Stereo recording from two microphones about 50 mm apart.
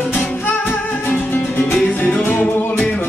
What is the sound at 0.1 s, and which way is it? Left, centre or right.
Music, left.